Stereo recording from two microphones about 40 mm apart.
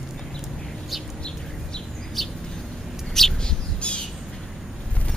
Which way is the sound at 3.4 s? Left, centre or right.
Left.